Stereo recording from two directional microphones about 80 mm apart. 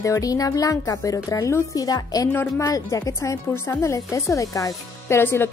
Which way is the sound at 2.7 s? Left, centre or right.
Left.